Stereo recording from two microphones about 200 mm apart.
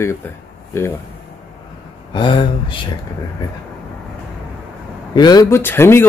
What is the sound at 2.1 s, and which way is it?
Speech, 25° left (ahead or behind).